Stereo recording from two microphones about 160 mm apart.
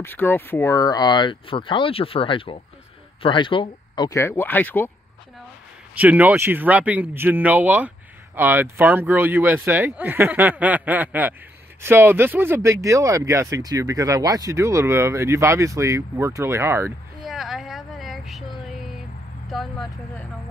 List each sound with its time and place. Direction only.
0.0 s speech: 15° left (ahead or behind); by 4.2 s 30° left (ahead or behind)
4.2 s speech: 15° left (ahead or behind)
5.9 s speech: 10° right (ahead or behind)
17.2 s vehicle: centre (ahead or behind)
19.5 s speech: centre (ahead or behind)